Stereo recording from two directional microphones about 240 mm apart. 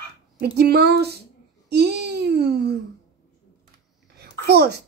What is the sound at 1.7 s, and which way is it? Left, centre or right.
Babbling, right.